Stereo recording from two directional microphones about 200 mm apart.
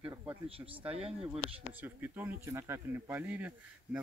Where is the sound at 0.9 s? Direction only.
30° right (ahead or behind).